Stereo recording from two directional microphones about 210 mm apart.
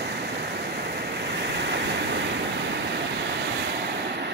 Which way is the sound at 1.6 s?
55° right (ahead or behind).